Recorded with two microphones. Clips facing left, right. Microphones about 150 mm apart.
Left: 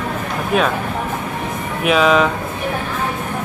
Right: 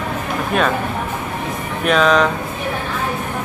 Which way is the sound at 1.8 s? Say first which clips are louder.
Left 1 dB; 5° left (ahead or behind).